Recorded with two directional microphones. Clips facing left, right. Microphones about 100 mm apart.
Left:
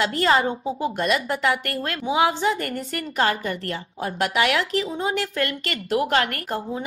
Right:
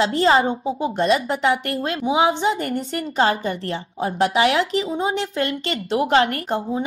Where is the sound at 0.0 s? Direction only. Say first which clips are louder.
Right 3 dB; 25° right (ahead or behind).